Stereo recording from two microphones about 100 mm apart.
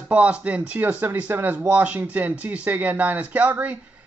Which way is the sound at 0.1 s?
15° right (ahead or behind).